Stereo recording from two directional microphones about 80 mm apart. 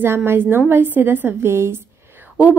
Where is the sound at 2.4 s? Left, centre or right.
Centre.